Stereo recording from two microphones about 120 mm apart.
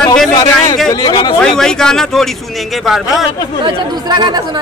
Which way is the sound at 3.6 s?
35° right (ahead or behind).